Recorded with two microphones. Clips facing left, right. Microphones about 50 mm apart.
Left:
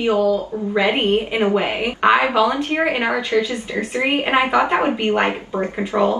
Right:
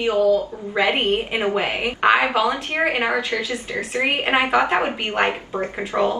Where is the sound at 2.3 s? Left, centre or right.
Right.